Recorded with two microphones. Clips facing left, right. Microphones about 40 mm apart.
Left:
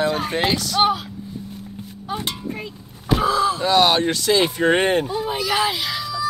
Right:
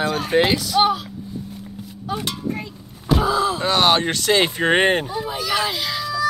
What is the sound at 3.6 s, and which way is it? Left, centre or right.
Speech, right.